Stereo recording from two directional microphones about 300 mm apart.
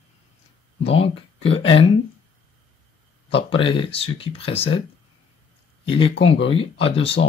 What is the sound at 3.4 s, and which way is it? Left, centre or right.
Speech, centre.